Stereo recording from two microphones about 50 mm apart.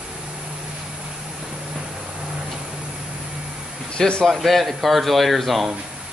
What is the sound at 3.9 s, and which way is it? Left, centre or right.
Speech, centre.